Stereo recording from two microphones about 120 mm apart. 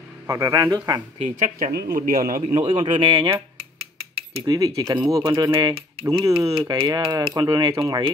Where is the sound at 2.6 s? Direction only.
45° right (ahead or behind).